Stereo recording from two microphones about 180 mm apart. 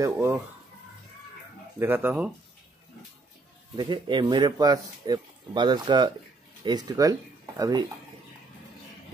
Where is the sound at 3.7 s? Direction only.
25° right (ahead or behind).